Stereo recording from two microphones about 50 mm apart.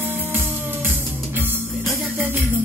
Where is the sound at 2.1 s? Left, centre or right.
Right.